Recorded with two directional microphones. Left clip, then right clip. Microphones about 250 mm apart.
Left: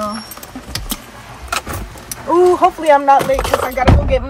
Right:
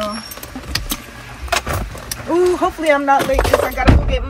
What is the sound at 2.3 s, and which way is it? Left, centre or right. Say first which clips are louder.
Speech: left 5 dB; left.